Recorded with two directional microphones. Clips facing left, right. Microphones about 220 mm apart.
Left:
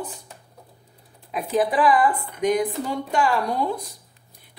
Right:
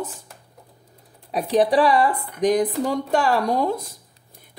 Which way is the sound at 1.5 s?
30° right (ahead or behind).